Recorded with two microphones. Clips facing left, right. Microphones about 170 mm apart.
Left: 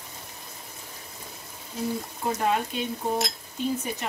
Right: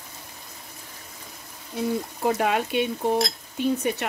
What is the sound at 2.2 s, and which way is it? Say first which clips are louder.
Speech: right 3 dB; 80° right.